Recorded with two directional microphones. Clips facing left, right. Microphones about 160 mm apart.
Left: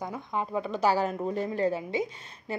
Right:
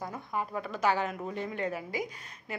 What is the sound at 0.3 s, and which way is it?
A woman's voice, 20° left (ahead or behind).